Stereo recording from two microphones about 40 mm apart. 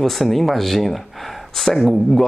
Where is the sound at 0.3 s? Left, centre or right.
Centre.